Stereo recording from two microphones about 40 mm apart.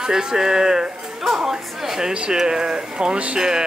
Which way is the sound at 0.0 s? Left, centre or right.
Centre.